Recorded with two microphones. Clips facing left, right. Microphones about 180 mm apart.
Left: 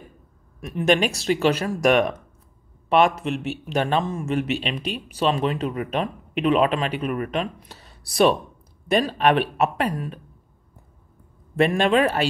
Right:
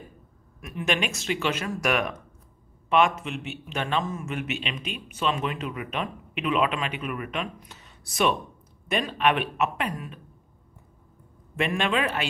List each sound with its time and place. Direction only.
0.6 s speech: 35° left (ahead or behind)
11.5 s speech: 35° left (ahead or behind)